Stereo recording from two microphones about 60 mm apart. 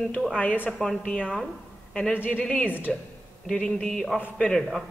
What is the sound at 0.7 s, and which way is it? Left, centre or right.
Speech, centre.